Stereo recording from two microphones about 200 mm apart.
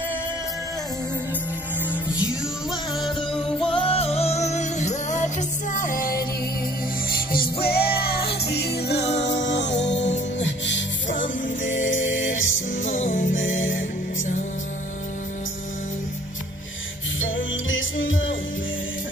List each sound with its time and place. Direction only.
3.5 s music: 5° left (ahead or behind)
3.8 s music: 30° left (ahead or behind); by 9.7 s 60° left (ahead or behind)
9.7 s music: 35° left (ahead or behind)
11.7 s a capella: 40° left (ahead or behind)
12.0 s music: 70° left (ahead or behind)
12.8 s music: 40° left (ahead or behind)
13.4 s music: 75° left (ahead or behind)
17.2 s music: 75° left (ahead or behind)